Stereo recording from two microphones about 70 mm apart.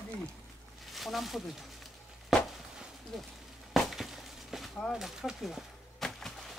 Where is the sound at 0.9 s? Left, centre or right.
Centre.